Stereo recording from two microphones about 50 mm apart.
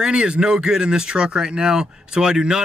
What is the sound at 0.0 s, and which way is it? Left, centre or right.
Speech, centre.